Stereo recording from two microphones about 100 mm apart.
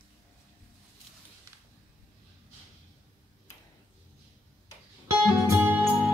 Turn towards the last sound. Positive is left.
turn(degrees=-15)  # may be behind; listen again after turning